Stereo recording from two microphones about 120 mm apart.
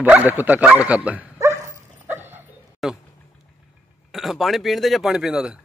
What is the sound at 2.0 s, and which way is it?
Dog, 15° right (ahead or behind).